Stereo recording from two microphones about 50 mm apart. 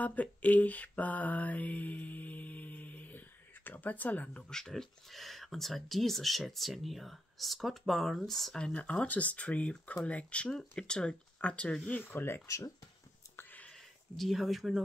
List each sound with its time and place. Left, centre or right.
0.0 s mantra: left
4.5 s speech: centre
8.5 s speech: centre
12.1 s speech: left
13.7 s a sound: centre